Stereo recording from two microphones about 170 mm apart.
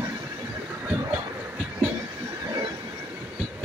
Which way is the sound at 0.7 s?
10° right (ahead or behind).